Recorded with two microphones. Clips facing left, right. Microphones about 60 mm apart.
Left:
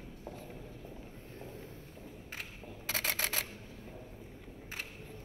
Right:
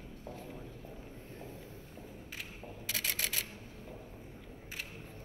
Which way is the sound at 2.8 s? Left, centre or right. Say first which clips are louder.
Left 3 dB; left.